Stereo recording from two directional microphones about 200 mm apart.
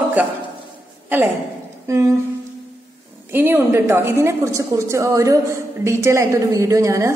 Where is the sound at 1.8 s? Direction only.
15° right (ahead or behind).